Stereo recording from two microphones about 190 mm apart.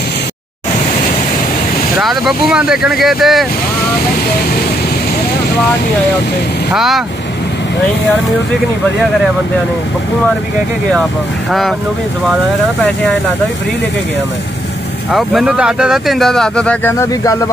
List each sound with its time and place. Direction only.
2.0 s speech: centre (ahead or behind)
6.7 s speech: centre (ahead or behind)
15.1 s speech: 5° right (ahead or behind); by 17.5 s 15° left (ahead or behind)